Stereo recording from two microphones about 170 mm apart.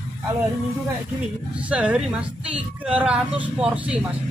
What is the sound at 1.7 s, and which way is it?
Speech, 5° right (ahead or behind).